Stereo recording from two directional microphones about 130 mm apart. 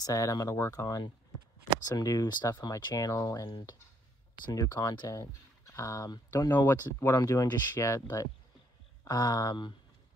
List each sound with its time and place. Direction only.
0.0 s speech: 25° left (ahead or behind)
6.5 s speech: 20° left (ahead or behind)